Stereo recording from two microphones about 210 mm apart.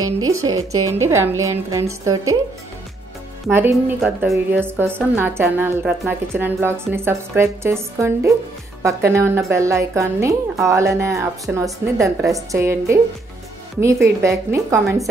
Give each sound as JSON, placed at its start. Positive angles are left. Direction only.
{"t": 0.2, "sound": "speech", "side_deg": -75}
{"t": 0.8, "sound": "a woman's voice", "side_deg": -15}
{"t": 3.4, "sound": "a woman's voice", "side_deg": -10}
{"t": 14.0, "sound": "a woman's voice", "side_deg": -15}